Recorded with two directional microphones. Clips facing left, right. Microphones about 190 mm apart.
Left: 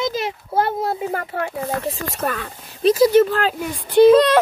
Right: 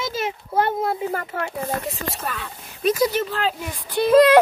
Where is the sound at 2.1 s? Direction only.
45° left (ahead or behind).